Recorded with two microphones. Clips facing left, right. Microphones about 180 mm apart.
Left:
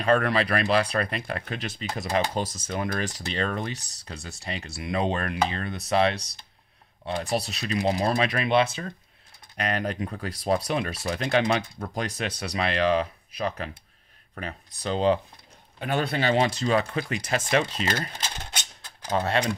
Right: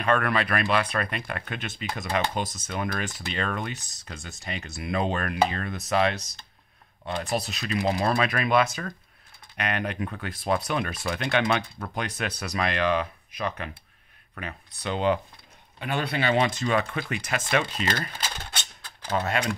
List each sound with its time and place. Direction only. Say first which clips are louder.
0.0 s speech: left 2 dB; 35° left (ahead or behind)
15.8 s speech: left 2 dB; 45° left (ahead or behind)
19.1 s speech: left 2 dB; 30° left (ahead or behind)